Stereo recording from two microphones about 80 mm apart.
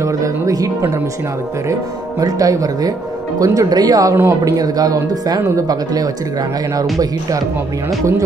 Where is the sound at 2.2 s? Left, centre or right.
Right.